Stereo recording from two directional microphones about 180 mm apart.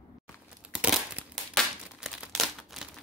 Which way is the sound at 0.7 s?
5° right (ahead or behind).